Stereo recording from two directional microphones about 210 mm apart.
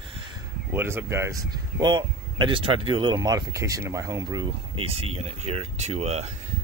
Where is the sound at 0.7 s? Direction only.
10° right (ahead or behind); by 6.3 s 30° right (ahead or behind).